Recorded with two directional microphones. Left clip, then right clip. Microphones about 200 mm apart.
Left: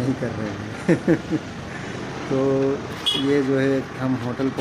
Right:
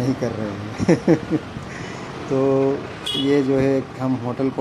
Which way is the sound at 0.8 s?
10° right (ahead or behind).